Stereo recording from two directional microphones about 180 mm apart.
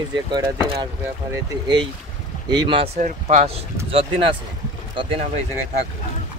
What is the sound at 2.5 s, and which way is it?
Speech, 25° right (ahead or behind).